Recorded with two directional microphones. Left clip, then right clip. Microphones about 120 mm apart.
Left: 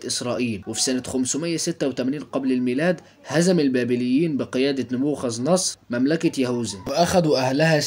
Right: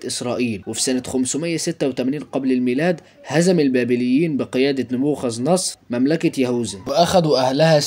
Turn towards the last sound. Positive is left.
turn(degrees=-25)  # may be behind; listen again after turning